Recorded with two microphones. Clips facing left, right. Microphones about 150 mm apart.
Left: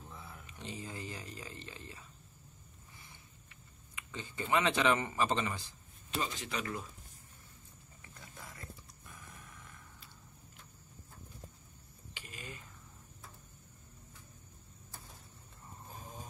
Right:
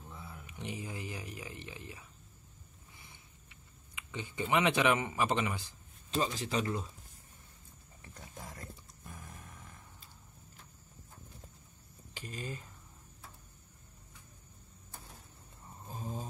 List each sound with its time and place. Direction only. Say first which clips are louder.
0.1 s a sound: right 3 dB; centre (ahead or behind)
0.5 s speech: right 3 dB; 15° right (ahead or behind)
4.1 s speech: right 1 dB; 15° right (ahead or behind)
6.0 s speech: right 5 dB; 35° right (ahead or behind)
8.0 s roaring cats: right 4 dB; 40° right (ahead or behind)
12.1 s a sound: right 7 dB; 35° right (ahead or behind)